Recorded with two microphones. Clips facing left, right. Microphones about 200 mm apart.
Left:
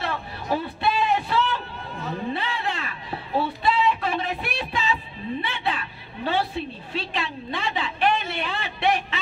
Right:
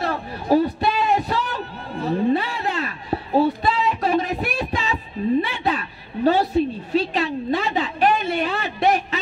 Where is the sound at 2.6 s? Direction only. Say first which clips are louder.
Right 5 dB; 40° right (ahead or behind).